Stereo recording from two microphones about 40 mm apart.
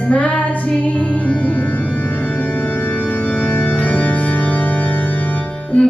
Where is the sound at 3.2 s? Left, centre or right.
Left.